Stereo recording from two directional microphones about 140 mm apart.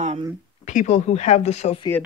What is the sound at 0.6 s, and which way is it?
Speech, 60° left (ahead or behind).